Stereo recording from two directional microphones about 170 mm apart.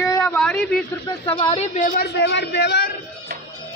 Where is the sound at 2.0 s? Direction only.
85° left.